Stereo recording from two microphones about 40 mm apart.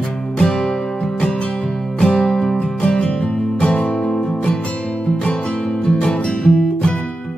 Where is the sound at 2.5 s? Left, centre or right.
Left.